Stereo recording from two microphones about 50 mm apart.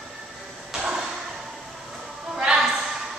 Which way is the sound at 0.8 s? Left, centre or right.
Centre.